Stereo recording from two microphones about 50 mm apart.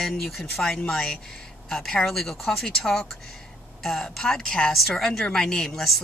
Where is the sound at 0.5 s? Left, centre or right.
Centre.